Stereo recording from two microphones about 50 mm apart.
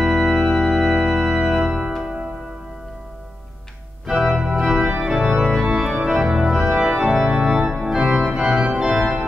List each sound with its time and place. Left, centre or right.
0.0 s organ: centre
1.5 s music: centre
4.1 s organ: centre
5.3 s organ: centre
5.6 s organ: centre